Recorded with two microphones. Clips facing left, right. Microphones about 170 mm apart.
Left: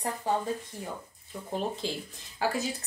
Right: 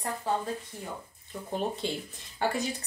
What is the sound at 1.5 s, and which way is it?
Speech, centre (ahead or behind).